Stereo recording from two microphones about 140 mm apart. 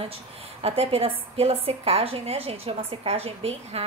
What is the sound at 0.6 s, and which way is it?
A woman's voice, 45° right (ahead or behind).